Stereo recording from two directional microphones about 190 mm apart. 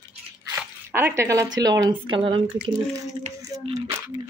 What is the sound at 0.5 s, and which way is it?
Speech, 10° right (ahead or behind).